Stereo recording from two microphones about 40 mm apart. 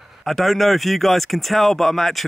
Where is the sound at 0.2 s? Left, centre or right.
Centre.